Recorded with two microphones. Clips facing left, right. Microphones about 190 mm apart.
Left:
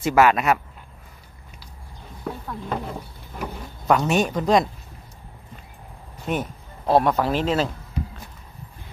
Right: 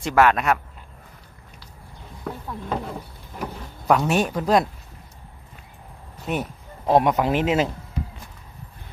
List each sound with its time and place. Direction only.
0.0 s speech: 5° left (ahead or behind)
2.2 s a sound: centre (ahead or behind)
6.2 s speech: 5° right (ahead or behind)
6.9 s speech: 15° right (ahead or behind)